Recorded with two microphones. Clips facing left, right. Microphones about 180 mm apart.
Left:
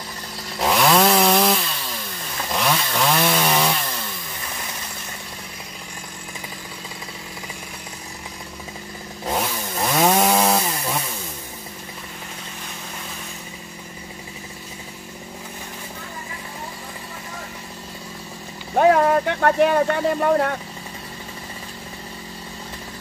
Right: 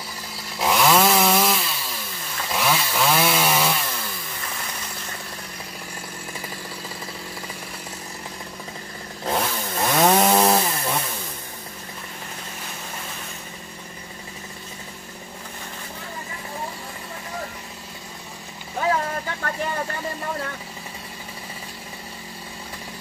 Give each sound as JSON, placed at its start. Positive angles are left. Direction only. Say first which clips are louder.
{"t": 0.6, "sound": "chainsaw", "louder": "left 1 dB", "side_deg": 0}
{"t": 9.8, "sound": "chainsaw", "louder": "even", "side_deg": 0}
{"t": 18.8, "sound": "vehicle", "louder": "left 9 dB", "side_deg": 65}